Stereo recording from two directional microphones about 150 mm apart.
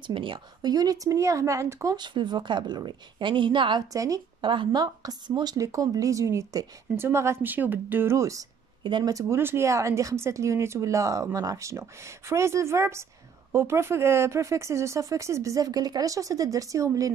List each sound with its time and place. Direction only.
0.0 s speech: 35° right (ahead or behind)